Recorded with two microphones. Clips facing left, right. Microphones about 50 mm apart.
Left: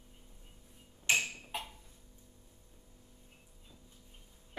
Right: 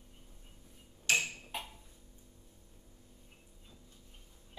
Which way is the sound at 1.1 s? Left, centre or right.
Left.